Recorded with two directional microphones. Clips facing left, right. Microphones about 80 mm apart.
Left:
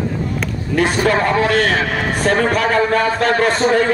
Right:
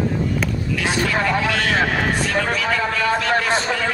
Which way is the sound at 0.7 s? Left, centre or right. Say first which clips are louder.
Left 7 dB; left.